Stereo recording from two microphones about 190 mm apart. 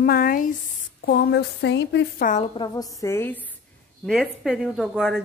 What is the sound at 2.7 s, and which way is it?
Speech, 20° left (ahead or behind).